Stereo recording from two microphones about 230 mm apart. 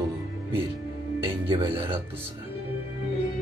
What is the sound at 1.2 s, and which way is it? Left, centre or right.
Speech, right.